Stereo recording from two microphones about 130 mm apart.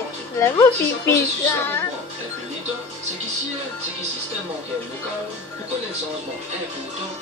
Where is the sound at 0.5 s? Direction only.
20° left (ahead or behind).